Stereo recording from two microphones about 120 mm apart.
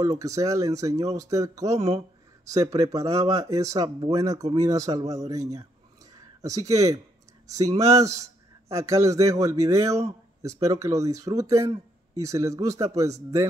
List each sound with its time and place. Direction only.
0.0 s a man's voice: 25° right (ahead or behind)